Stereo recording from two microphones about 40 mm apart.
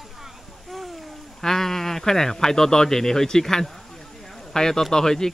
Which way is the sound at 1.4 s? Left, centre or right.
Centre.